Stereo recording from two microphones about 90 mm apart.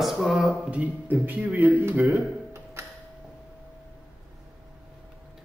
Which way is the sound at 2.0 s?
30° right (ahead or behind).